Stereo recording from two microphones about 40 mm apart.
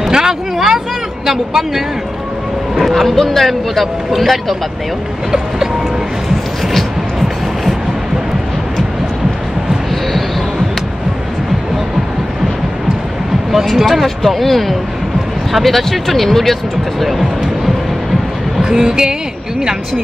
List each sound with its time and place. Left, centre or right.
0.1 s a sound: centre
1.2 s a woman's voice: centre
2.7 s a man's voice: centre
6.7 s music: centre
13.5 s a man's voice: centre
18.6 s speech: centre